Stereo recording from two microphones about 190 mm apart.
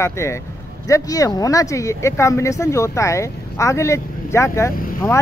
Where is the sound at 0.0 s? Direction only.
15° left (ahead or behind).